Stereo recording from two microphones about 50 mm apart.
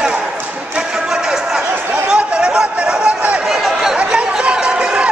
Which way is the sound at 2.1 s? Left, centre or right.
Centre.